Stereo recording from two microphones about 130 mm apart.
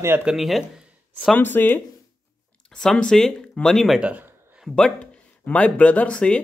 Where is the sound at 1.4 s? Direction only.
15° left (ahead or behind); by 4.1 s centre (ahead or behind).